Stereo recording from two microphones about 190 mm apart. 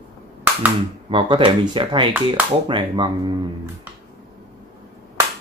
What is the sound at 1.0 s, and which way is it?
Speech, 25° right (ahead or behind).